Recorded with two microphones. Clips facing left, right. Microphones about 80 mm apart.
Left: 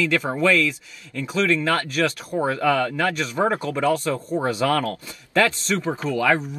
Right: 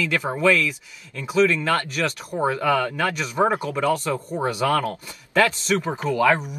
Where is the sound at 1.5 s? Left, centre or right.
Right.